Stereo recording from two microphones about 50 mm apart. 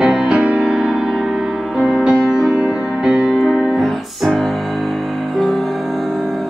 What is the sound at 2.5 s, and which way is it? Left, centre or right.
Music, right.